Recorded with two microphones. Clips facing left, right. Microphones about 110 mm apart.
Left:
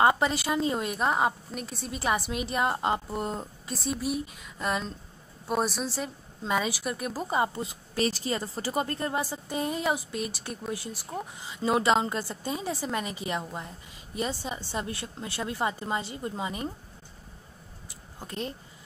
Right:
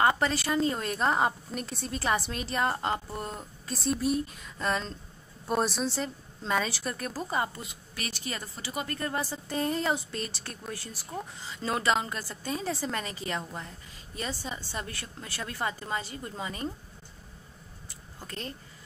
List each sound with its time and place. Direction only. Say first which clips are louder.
0.1 s speech: left 1 dB; 15° left (ahead or behind)
3.7 s a woman's voice: right 2 dB; 5° left (ahead or behind)
17.8 s a sound: left 2 dB; 20° left (ahead or behind)